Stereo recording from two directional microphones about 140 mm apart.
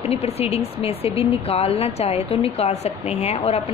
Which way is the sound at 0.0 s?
50° left (ahead or behind).